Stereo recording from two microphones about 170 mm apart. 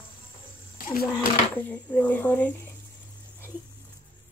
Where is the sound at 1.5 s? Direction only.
10° left (ahead or behind).